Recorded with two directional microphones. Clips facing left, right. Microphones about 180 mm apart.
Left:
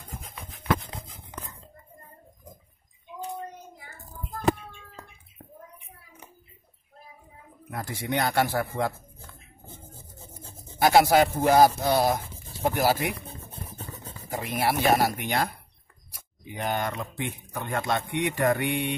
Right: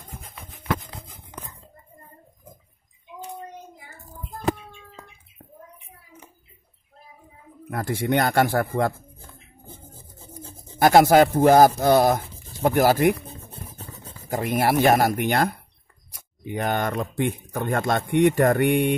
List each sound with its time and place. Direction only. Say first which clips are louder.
7.7 s speech: right 7 dB; 55° right (ahead or behind)
10.8 s speech: right 4 dB; 50° right (ahead or behind)
14.3 s speech: right 6 dB; 50° right (ahead or behind)
16.5 s speech: right 5 dB; 50° right (ahead or behind)